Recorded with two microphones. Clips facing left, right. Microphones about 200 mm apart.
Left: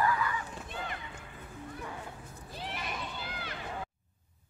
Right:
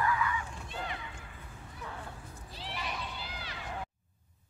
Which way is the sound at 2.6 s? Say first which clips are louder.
Even; 50° left (ahead or behind).